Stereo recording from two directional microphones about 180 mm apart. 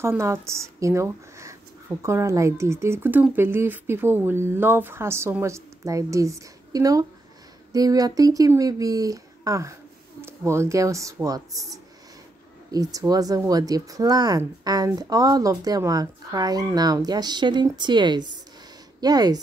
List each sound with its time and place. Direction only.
0.0 s speech: 15° right (ahead or behind)
12.7 s speech: 20° right (ahead or behind)